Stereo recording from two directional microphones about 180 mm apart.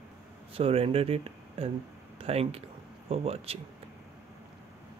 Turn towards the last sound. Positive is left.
turn(degrees=-35)  # may be behind; listen again after turning